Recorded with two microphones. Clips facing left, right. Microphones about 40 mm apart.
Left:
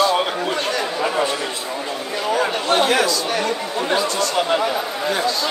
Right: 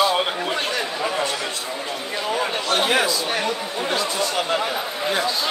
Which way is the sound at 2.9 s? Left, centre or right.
Centre.